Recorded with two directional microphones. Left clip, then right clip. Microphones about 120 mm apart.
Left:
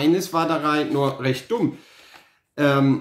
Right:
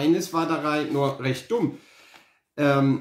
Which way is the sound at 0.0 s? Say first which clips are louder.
Left 3 dB; 30° left (ahead or behind).